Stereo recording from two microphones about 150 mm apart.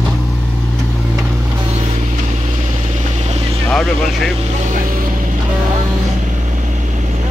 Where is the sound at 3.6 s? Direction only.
5° left (ahead or behind).